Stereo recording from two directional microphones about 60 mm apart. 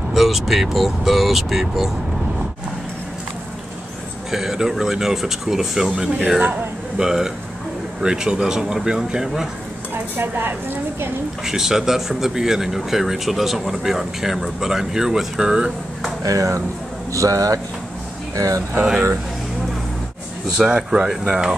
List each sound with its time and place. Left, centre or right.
0.1 s speech: centre
4.3 s speech: centre
9.9 s speech: right
11.4 s speech: centre
16.3 s speech: right
20.5 s speech: centre